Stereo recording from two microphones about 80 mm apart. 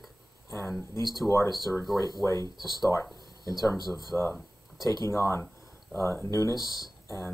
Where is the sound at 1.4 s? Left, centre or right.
Right.